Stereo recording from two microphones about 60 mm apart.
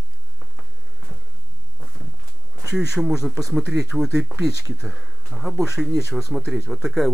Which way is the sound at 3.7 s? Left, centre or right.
Right.